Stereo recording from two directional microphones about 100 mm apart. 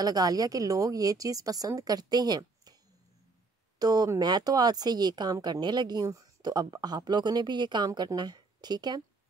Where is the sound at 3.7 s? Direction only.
40° right (ahead or behind).